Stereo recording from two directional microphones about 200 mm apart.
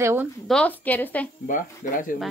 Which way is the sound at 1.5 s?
40° left (ahead or behind).